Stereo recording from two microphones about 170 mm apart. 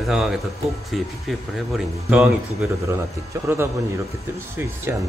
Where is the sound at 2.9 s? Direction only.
15° right (ahead or behind).